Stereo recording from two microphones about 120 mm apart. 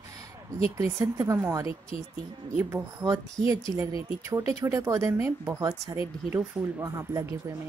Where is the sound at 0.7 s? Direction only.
25° right (ahead or behind).